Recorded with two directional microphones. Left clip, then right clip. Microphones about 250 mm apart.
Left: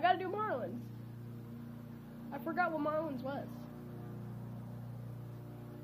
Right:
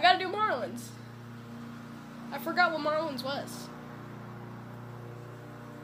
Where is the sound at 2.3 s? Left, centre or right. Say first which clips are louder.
Right 8 dB; centre.